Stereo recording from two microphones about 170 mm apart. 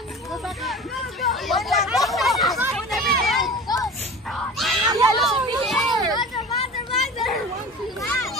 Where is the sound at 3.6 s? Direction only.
20° left (ahead or behind).